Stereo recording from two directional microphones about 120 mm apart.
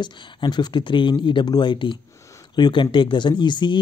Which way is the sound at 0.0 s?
35° left (ahead or behind).